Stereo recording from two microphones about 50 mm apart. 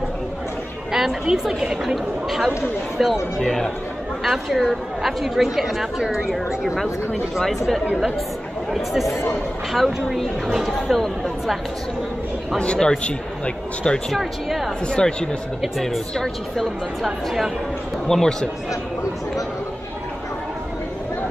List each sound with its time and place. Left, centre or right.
0.9 s a woman's voice: centre
12.5 s speech: centre
14.1 s a woman's voice: centre
14.9 s speech: centre
15.6 s a woman's voice: centre